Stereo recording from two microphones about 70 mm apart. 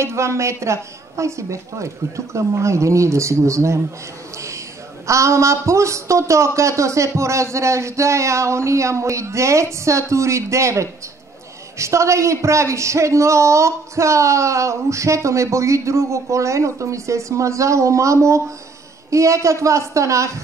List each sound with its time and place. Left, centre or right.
0.0 s speech: right
5.0 s speech: right